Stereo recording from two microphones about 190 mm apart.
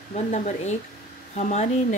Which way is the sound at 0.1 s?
40° left (ahead or behind).